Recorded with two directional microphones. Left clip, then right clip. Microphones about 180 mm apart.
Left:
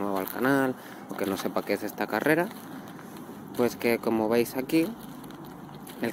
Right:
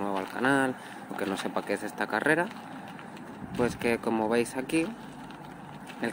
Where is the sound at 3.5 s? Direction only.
15° left (ahead or behind).